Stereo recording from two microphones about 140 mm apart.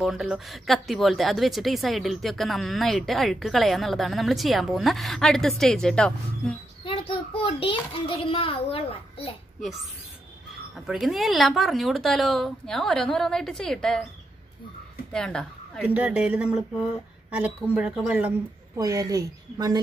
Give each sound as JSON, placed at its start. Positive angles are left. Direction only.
{"t": 0.0, "sound": "a woman's voice", "side_deg": 0}
{"t": 6.8, "sound": "a child's voice", "side_deg": 40}
{"t": 10.9, "sound": "a woman's voice", "side_deg": 0}
{"t": 15.1, "sound": "a woman's voice", "side_deg": 5}
{"t": 15.9, "sound": "speech", "side_deg": -10}
{"t": 17.7, "sound": "speech", "side_deg": -5}
{"t": 18.8, "sound": "speech", "side_deg": -25}